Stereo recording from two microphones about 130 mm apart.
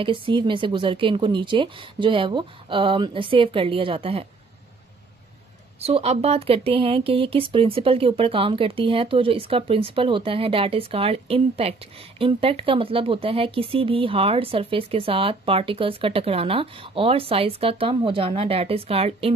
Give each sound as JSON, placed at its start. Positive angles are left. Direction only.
{"t": 0.0, "sound": "speech", "side_deg": -40}
{"t": 5.8, "sound": "speech", "side_deg": -50}